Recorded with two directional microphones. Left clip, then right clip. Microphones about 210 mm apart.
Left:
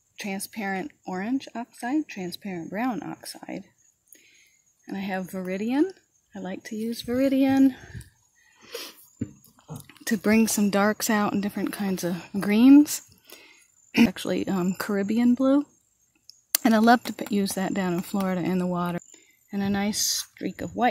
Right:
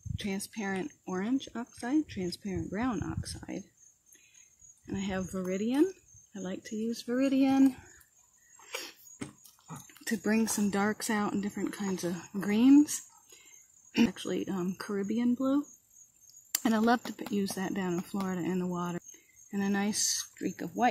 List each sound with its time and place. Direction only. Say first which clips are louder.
0.1 s speech: left 4 dB; 30° left (ahead or behind)
4.8 s speech: left 5 dB; 35° left (ahead or behind)
9.8 s speech: left 8 dB; 50° left (ahead or behind)
19.5 s speech: left 4 dB; 40° left (ahead or behind)